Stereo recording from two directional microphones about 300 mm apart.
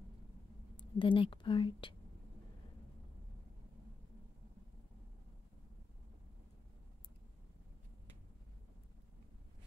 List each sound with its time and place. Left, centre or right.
0.7 s a woman's voice: centre